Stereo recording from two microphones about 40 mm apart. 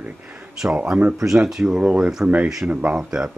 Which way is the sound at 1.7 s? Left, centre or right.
Right.